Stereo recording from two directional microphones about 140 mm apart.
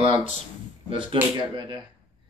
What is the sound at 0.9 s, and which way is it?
Speech, 40° right (ahead or behind).